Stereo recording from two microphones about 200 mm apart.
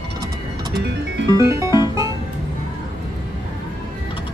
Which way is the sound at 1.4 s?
15° right (ahead or behind).